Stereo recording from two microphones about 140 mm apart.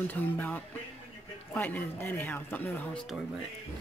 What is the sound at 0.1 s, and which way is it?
Speech, 10° left (ahead or behind).